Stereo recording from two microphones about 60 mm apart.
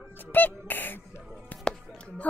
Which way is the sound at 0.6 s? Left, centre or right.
Left.